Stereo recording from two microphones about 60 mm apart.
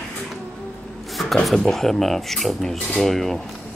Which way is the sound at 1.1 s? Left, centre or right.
Centre.